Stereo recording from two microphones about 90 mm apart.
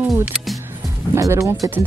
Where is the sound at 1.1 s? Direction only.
30° right (ahead or behind).